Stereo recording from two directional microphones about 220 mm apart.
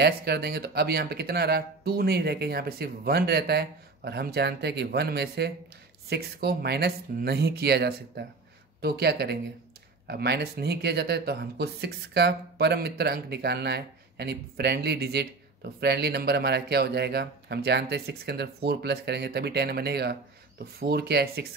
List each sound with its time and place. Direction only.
0.0 s speech: 45° right (ahead or behind)